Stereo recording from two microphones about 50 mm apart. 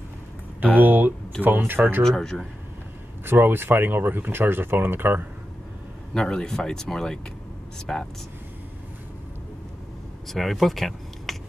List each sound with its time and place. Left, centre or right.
0.7 s speech: right
1.6 s speech: right
2.0 s speech: centre
3.3 s speech: right
6.1 s speech: centre
10.2 s speech: centre